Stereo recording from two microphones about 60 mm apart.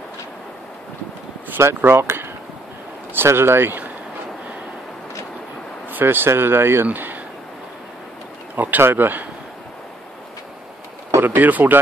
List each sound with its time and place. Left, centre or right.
1.6 s speech: right
5.9 s speech: right
8.5 s speech: right
11.1 s speech: right